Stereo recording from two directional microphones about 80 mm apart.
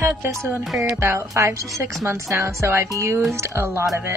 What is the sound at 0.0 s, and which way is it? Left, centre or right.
A woman's voice, right.